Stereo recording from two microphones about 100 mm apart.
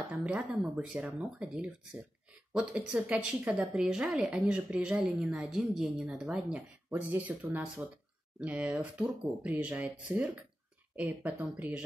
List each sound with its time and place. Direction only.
0.1 s a woman's voice: 10° right (ahead or behind)
6.9 s a woman's voice: 20° right (ahead or behind)